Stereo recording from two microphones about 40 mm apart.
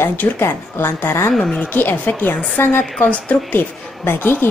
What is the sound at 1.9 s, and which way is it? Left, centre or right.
A woman's voice, left.